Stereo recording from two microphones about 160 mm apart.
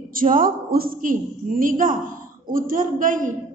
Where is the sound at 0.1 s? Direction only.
60° right (ahead or behind).